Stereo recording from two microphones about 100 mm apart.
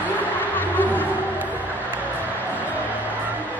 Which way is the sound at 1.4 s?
15° right (ahead or behind).